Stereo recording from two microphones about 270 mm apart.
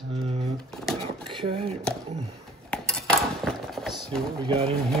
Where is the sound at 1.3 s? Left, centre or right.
Centre.